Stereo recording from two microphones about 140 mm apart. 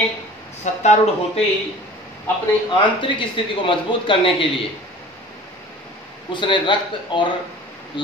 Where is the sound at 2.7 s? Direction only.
35° left (ahead or behind).